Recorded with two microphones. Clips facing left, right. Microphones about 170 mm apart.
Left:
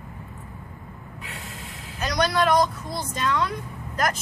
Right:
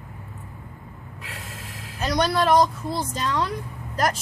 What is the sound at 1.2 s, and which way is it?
Snort, centre (ahead or behind).